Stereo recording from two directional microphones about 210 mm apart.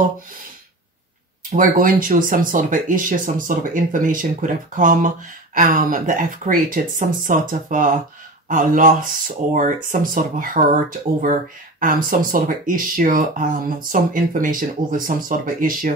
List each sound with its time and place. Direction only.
1.5 s speech: 40° right (ahead or behind)